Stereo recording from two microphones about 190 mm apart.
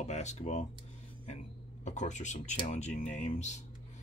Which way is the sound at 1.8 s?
40° left (ahead or behind).